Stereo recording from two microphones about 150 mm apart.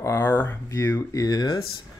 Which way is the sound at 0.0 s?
15° left (ahead or behind).